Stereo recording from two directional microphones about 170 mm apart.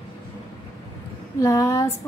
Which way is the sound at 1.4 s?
20° left (ahead or behind).